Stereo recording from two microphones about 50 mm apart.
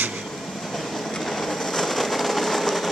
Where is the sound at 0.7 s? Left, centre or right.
Centre.